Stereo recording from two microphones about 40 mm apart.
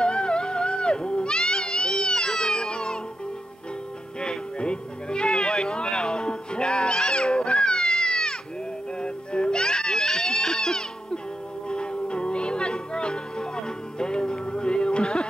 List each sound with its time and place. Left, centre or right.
0.0 s a sound: left
4.2 s cat: left
8.9 s music: left